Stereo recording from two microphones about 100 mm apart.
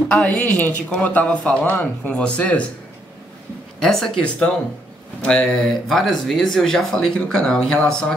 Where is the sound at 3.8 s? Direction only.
5° left (ahead or behind).